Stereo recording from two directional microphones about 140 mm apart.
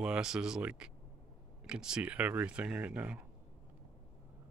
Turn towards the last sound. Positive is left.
turn(degrees=-10)  # may be behind; listen again after turning